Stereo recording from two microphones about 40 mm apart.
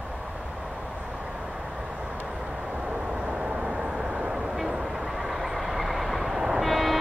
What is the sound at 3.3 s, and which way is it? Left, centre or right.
Vehicle, right.